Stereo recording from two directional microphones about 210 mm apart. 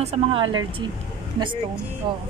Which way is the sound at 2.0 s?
25° right (ahead or behind).